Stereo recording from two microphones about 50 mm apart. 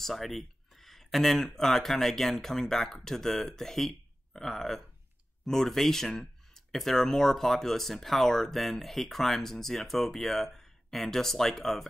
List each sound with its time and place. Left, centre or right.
0.0 s speech: centre